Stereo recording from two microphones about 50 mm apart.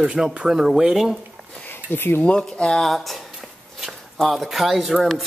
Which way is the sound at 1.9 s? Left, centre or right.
Left.